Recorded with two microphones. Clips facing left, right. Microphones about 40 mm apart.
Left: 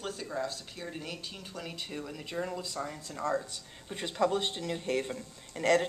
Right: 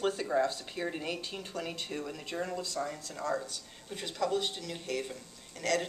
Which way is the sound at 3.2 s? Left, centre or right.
Left.